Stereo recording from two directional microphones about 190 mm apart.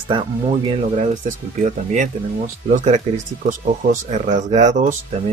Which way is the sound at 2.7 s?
40° right (ahead or behind).